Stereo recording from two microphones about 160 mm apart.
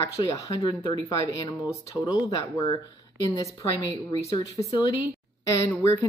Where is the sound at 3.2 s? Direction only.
25° left (ahead or behind).